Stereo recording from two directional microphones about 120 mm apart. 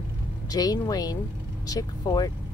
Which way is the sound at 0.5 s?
30° left (ahead or behind).